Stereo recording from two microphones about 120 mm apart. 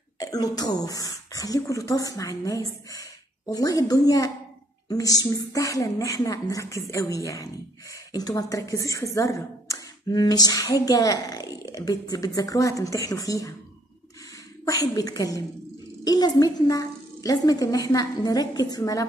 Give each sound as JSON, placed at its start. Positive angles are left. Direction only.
{"t": 0.2, "sound": "a woman's voice", "side_deg": 30}
{"t": 14.6, "sound": "a woman's voice", "side_deg": 30}